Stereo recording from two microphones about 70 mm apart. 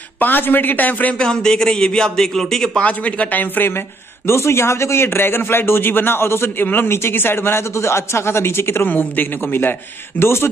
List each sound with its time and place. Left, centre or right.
0.2 s speech: left
1.1 s a man's voice: centre
2.8 s speech: centre
4.3 s a man's voice: left